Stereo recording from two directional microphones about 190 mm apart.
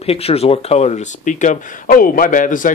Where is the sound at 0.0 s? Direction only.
30° left (ahead or behind).